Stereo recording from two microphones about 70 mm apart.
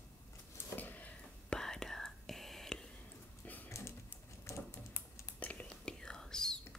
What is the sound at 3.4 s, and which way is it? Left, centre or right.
Typing, left.